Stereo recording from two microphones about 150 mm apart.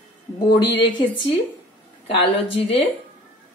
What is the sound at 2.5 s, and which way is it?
Speech, 40° left (ahead or behind).